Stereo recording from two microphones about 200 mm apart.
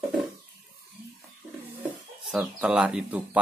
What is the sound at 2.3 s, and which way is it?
Speech, 5° right (ahead or behind).